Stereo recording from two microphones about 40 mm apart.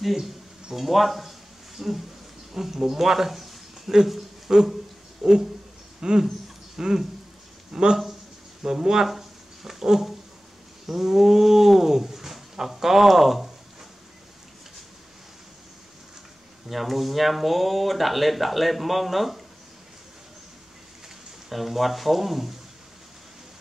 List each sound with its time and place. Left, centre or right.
0.0 s speech: centre
9.1 s a sound: centre
10.9 s speech: centre
16.6 s speech: centre
21.5 s speech: centre